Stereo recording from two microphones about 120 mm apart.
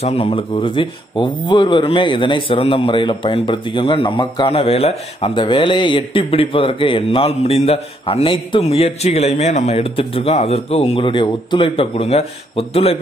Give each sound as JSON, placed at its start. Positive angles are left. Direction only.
{"t": 0.0, "sound": "speech", "side_deg": 55}
{"t": 4.5, "sound": "speech", "side_deg": 55}